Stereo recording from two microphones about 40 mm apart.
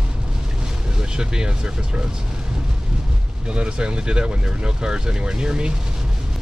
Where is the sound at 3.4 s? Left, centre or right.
Right.